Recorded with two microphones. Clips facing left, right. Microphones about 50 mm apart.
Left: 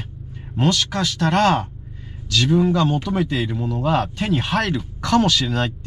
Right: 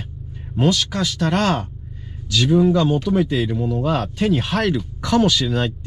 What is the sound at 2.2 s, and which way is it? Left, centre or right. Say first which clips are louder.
Speech: even; centre.